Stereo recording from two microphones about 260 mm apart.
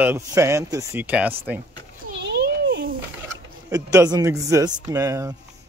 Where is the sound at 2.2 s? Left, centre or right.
Right.